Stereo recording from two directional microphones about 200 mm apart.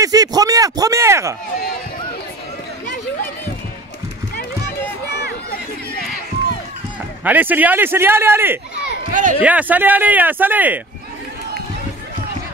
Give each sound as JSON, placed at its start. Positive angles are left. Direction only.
{"t": 0.0, "sound": "speech", "side_deg": -20}
{"t": 7.2, "sound": "speech", "side_deg": -10}
{"t": 9.1, "sound": "speech", "side_deg": -40}
{"t": 9.4, "sound": "speech", "side_deg": -5}